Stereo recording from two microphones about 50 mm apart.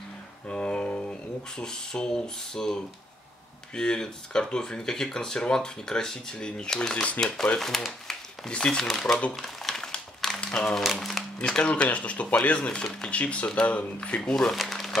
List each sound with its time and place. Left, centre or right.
0.5 s a sound: centre
1.6 s speech: centre
7.2 s speech: left
7.5 s speech: centre
8.8 s speech: centre
9.3 s crumpling: centre
10.4 s speech: centre
10.8 s speech: centre
11.3 s speech: centre
13.1 s speech: left
14.5 s a sound: centre